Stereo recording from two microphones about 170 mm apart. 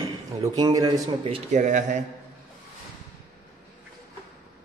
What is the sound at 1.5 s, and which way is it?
Speech, 45° right (ahead or behind).